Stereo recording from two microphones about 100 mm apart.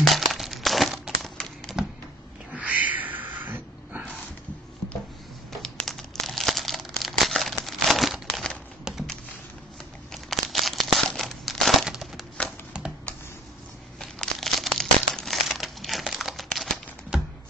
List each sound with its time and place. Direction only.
0.0 s crumpling: centre (ahead or behind)
2.6 s a sound: 15° right (ahead or behind)
5.6 s crumpling: 5° left (ahead or behind)
10.1 s crumpling: centre (ahead or behind)
12.7 s a sound: 10° right (ahead or behind)
13.9 s crumpling: 5° left (ahead or behind)